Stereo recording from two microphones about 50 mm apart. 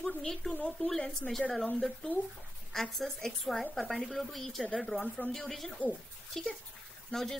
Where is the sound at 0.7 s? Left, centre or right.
Centre.